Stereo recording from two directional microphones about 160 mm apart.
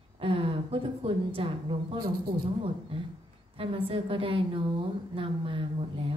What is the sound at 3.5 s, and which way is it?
A woman's voice, 35° right (ahead or behind).